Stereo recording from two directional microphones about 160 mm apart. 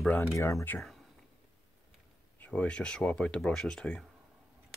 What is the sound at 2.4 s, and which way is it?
Speech, 5° left (ahead or behind).